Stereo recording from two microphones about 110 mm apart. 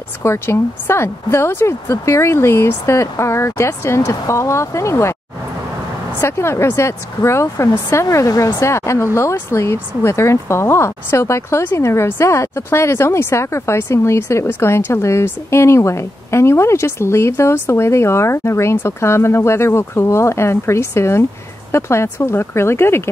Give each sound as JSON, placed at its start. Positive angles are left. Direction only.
{"t": 0.2, "sound": "speech", "side_deg": 25}
{"t": 6.2, "sound": "speech", "side_deg": 25}